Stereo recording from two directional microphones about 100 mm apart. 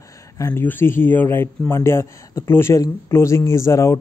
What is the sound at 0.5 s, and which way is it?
Speech, 20° left (ahead or behind).